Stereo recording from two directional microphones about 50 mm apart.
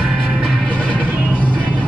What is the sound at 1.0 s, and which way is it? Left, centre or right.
Music, right.